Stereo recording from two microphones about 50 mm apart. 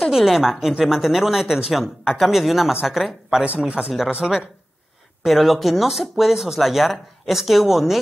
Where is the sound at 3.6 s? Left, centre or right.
Right.